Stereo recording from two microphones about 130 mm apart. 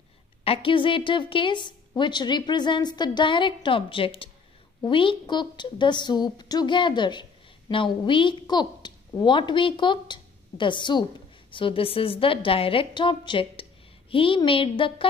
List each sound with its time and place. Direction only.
0.4 s a woman's voice: 45° left (ahead or behind)